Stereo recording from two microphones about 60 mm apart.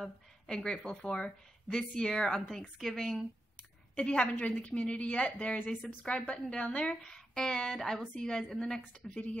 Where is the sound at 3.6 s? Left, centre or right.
Centre.